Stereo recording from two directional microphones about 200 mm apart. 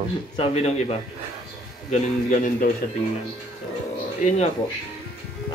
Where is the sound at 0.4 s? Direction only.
30° left (ahead or behind).